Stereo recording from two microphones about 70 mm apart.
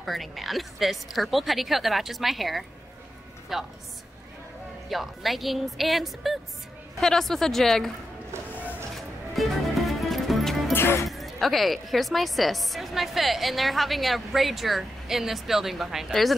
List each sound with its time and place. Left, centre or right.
0.0 s speech: centre
4.8 s speech: centre
8.9 s music: centre
10.7 s music: left
11.1 s speech: centre